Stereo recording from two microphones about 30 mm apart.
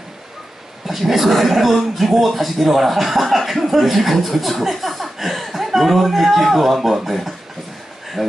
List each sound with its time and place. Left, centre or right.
0.8 s speech: centre